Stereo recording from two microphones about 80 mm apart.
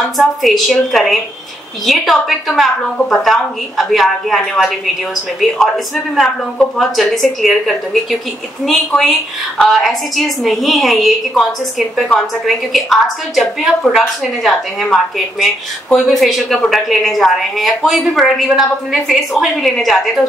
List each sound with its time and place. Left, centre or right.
0.2 s a woman's voice: centre
6.6 s a woman's voice: centre
12.4 s a woman's voice: centre